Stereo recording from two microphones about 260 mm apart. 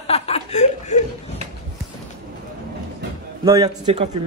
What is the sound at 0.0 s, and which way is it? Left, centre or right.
Chuckle, left.